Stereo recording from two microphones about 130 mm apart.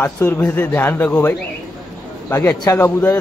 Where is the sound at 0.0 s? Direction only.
15° left (ahead or behind).